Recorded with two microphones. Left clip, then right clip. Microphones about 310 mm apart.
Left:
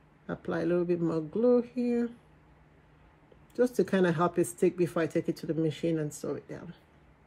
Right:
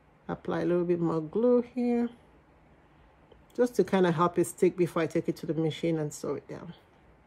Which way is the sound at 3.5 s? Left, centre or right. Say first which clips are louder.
Right 1 dB; centre.